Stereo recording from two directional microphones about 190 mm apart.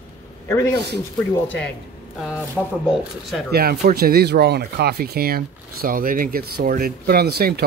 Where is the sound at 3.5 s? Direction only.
55° right (ahead or behind).